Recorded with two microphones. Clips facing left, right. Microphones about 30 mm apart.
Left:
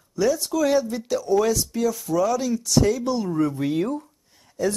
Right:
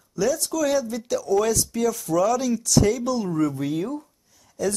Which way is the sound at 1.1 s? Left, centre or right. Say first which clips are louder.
Even; centre.